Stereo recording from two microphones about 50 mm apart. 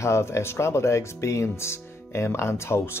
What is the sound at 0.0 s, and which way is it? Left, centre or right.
Speech, left.